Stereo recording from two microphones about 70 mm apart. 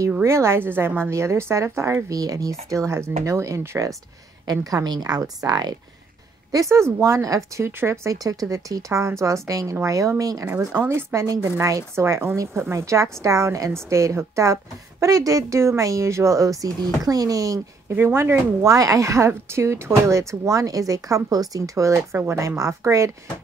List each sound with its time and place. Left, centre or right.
0.2 s speech: right
1.1 s speech: right
2.0 s a woman's voice: right
4.8 s speech: right
6.5 s a woman's voice: right
8.5 s a woman's voice: right
10.7 s a woman's voice: right
17.9 s a woman's voice: right